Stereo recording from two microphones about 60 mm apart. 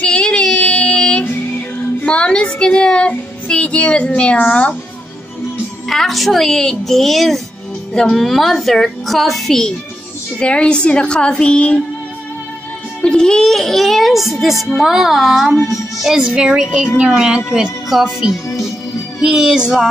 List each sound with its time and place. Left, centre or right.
0.0 s child singing: centre
2.0 s speech: centre
5.9 s a woman's voice: centre
13.0 s a woman's voice: centre